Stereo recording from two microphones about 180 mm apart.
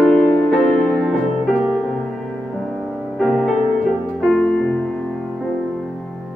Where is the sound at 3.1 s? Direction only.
Centre (ahead or behind).